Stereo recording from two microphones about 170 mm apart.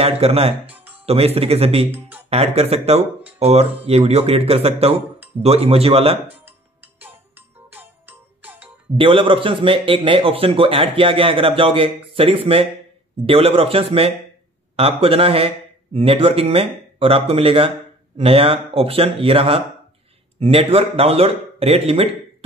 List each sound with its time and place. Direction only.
0.0 s a man's voice: 35° right (ahead or behind)
0.7 s music: 10° right (ahead or behind)
1.0 s a man's voice: 35° right (ahead or behind)
1.9 s speech: 10° right (ahead or behind)
2.2 s a man's voice: 40° right (ahead or behind)
6.4 s music: 10° right (ahead or behind)
8.9 s a man's voice: 30° right (ahead or behind)